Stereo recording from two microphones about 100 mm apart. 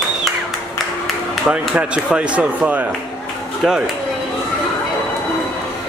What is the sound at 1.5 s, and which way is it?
Speech, 10° right (ahead or behind).